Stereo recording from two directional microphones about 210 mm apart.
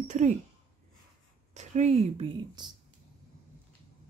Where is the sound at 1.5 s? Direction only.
35° right (ahead or behind).